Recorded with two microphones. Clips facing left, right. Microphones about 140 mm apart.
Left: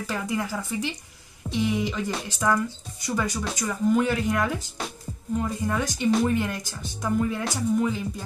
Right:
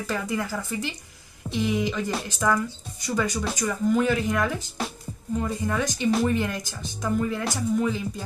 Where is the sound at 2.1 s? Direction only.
Centre (ahead or behind).